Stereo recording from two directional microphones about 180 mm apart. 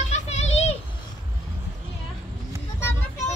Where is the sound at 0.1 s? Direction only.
40° left (ahead or behind).